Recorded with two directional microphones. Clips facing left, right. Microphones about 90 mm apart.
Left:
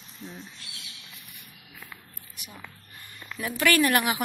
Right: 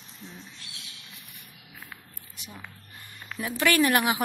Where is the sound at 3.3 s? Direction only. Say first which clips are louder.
Even; 20° right (ahead or behind).